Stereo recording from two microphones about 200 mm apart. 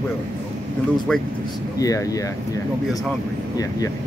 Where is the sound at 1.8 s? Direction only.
15° left (ahead or behind).